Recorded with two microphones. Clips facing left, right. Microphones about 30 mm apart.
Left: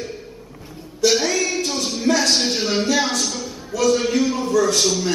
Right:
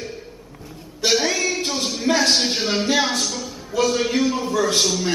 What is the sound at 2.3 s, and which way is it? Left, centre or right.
A man's voice, centre.